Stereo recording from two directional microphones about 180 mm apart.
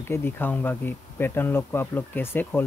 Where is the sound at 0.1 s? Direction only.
10° left (ahead or behind).